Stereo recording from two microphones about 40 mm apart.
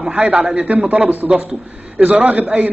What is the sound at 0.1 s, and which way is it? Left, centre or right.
Speech, right.